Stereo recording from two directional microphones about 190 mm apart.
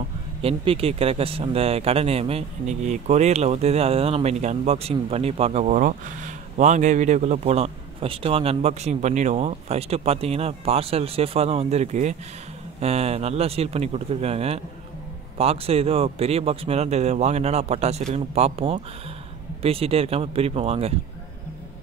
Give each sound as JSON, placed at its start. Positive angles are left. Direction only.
{"t": 0.4, "sound": "speech", "side_deg": -30}